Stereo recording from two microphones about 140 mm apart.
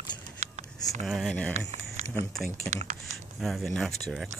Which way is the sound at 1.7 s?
50° right (ahead or behind).